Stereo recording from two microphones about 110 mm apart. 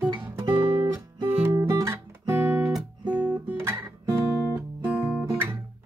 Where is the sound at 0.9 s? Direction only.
25° right (ahead or behind).